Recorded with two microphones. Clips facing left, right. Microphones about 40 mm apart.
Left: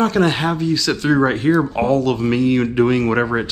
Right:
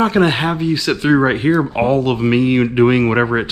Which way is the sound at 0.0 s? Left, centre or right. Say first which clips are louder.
Right 2 dB; right.